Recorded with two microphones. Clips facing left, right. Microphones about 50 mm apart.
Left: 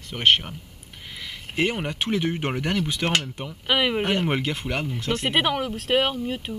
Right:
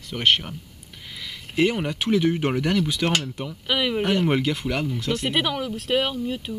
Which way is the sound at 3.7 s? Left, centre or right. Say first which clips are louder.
Left 1 dB; left.